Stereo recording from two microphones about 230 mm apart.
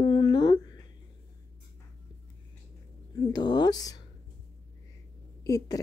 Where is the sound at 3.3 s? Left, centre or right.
Centre.